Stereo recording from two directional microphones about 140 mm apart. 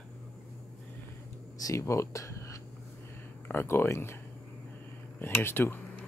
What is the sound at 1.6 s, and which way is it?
Speech, 20° left (ahead or behind).